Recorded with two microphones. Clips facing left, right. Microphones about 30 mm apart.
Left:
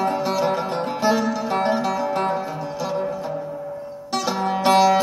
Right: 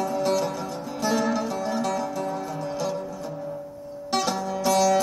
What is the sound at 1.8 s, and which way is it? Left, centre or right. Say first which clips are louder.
Music: left 4 dB; left.